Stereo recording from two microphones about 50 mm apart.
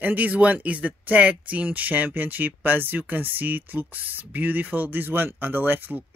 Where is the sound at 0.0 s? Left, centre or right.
Right.